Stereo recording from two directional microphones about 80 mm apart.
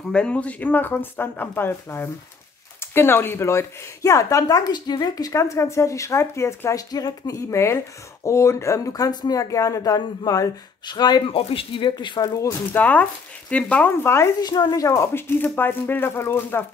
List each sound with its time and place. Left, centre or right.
0.1 s speech: centre; by 5.3 s left
5.3 s speech: left
6.9 s speech: left
12.7 s speech: centre
14.0 s speech: left
14.4 s speech: left